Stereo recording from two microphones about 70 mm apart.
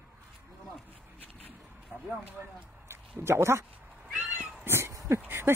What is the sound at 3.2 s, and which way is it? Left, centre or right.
Speech, right.